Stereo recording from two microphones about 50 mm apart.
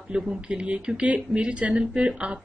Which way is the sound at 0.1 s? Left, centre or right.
Centre.